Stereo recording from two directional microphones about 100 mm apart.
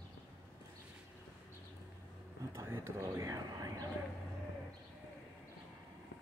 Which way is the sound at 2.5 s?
25° right (ahead or behind).